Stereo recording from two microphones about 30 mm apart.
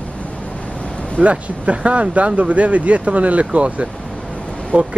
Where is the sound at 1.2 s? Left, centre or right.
Right.